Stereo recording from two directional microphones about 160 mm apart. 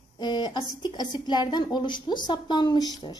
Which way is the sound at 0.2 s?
25° left (ahead or behind).